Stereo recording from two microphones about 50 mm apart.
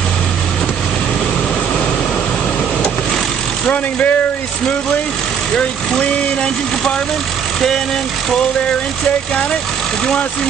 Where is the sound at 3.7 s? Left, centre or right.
Left.